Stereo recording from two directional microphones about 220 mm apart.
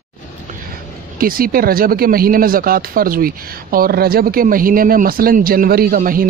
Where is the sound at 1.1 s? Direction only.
40° right (ahead or behind).